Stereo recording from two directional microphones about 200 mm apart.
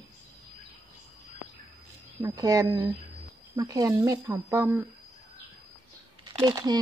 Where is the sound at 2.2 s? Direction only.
15° right (ahead or behind).